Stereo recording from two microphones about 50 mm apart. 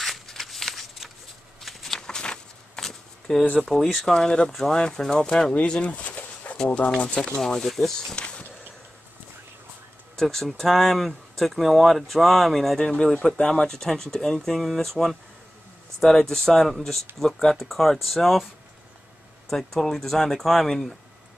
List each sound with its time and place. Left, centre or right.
0.0 s a sound: centre
1.6 s walk: centre
2.0 s a sound: centre
3.6 s speech: centre
5.5 s pigeon: left
7.0 s speech: left; by 8.2 s centre
8.2 s a sound: left
10.1 s speech: centre
19.5 s speech: centre